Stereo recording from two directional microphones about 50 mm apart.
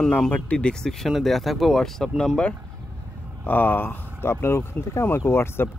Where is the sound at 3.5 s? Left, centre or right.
Left.